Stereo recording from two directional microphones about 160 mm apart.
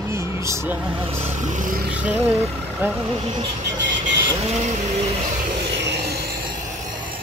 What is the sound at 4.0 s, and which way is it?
Vehicle, 30° right (ahead or behind).